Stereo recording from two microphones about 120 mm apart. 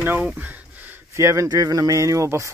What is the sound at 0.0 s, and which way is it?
Speech, 15° right (ahead or behind).